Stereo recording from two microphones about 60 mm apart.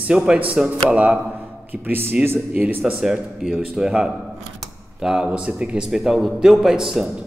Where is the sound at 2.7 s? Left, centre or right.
Right.